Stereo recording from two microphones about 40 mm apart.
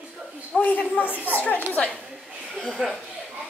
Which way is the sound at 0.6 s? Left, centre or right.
Left.